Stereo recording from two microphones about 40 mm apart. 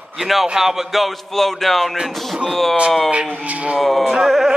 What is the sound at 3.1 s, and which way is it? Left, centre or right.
Speech, right.